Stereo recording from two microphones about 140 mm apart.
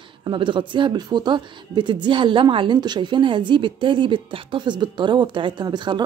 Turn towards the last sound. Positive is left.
turn(degrees=-30)  # may be behind; listen again after turning